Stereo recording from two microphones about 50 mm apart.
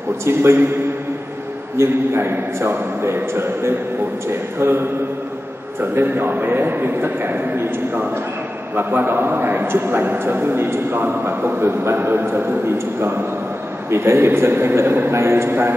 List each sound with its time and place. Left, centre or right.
0.2 s a man's voice: right
1.8 s a man's voice: right
5.9 s a man's voice: right
11.8 s a man's voice: right